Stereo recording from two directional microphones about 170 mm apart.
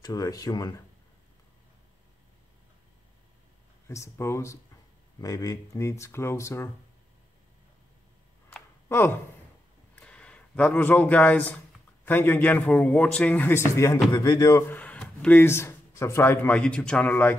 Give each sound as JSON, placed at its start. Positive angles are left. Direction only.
{"t": 0.0, "sound": "speech", "side_deg": 20}
{"t": 3.8, "sound": "speech", "side_deg": 15}
{"t": 8.5, "sound": "a sound", "side_deg": 10}
{"t": 9.9, "sound": "speech", "side_deg": 5}
{"t": 14.8, "sound": "speech", "side_deg": 10}